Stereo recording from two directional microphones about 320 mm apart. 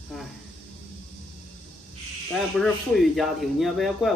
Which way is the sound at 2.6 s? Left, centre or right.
Centre.